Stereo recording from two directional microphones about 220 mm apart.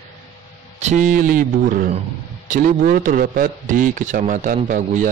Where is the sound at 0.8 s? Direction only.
35° right (ahead or behind).